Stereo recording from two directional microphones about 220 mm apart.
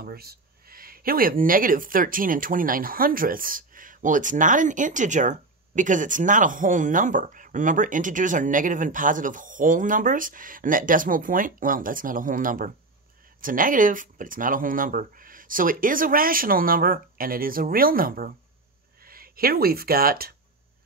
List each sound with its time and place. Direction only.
0.0 s speech: 45° right (ahead or behind)